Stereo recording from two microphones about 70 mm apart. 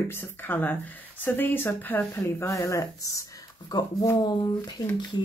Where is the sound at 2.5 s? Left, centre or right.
Left.